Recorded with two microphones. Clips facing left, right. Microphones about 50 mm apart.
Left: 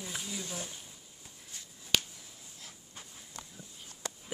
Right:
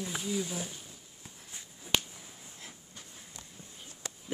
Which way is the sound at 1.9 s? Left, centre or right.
Centre.